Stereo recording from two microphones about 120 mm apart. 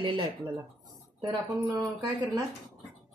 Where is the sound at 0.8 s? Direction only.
35° right (ahead or behind).